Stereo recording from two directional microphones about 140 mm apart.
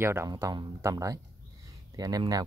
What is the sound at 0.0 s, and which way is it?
Speech, 20° right (ahead or behind).